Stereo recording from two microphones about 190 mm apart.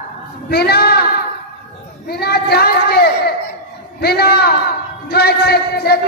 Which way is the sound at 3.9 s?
55° left (ahead or behind).